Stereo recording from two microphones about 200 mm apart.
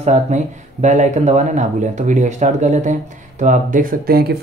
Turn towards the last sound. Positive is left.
turn(degrees=-50)  # may be behind; listen again after turning